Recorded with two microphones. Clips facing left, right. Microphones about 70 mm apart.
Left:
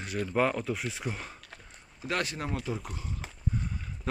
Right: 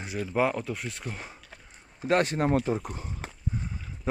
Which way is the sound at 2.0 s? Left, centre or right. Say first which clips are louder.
Right 8 dB; right.